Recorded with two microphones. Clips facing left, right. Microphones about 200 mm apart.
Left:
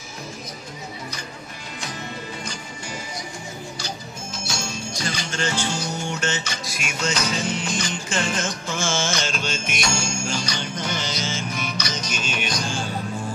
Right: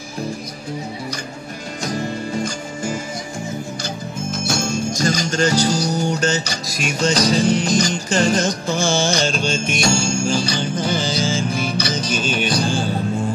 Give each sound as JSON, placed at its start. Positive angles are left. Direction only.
{"t": 1.8, "sound": "music", "side_deg": -45}